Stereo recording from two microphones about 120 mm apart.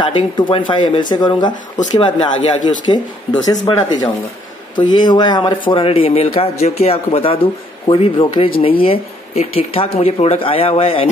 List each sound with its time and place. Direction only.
0.0 s speech: 40° left (ahead or behind)
1.5 s speech: 90° left
2.0 s speech: 40° left (ahead or behind)